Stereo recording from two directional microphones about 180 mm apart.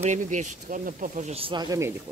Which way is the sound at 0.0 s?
45° right (ahead or behind).